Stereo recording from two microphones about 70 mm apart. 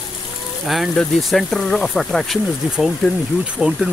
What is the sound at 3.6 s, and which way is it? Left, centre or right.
Speech, centre.